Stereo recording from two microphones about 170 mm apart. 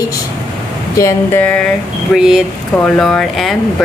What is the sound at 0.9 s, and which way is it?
Speech, 15° left (ahead or behind).